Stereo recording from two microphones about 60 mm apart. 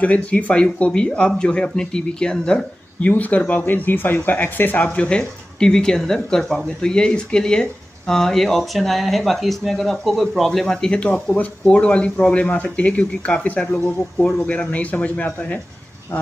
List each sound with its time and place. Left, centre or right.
0.0 s speech: left
3.1 s speech: left
4.8 s speech: centre